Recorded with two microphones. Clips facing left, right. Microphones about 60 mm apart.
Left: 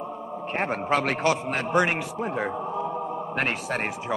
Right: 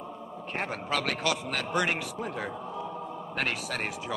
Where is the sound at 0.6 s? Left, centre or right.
Left.